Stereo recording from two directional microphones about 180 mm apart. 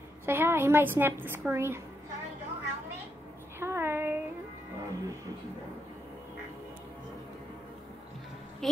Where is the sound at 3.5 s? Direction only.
15° right (ahead or behind).